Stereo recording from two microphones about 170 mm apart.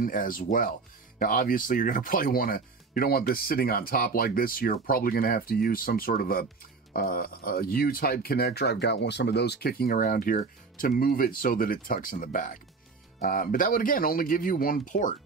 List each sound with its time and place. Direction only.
0.0 s speech: 55° left (ahead or behind)